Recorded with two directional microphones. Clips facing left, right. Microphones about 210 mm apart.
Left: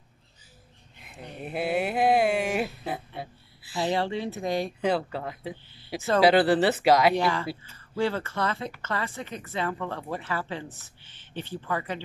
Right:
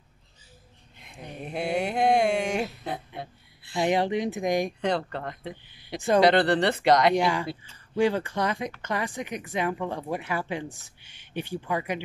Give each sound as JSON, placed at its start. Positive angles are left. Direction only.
{"t": 1.4, "sound": "a sound", "side_deg": 5}
{"t": 3.8, "sound": "a woman's voice", "side_deg": -15}
{"t": 4.8, "sound": "speech", "side_deg": 5}
{"t": 7.2, "sound": "a woman's voice", "side_deg": -15}